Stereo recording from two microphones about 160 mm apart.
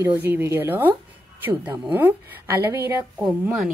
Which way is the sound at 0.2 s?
15° right (ahead or behind).